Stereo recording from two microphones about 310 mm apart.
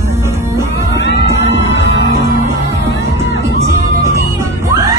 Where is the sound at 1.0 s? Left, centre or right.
Left.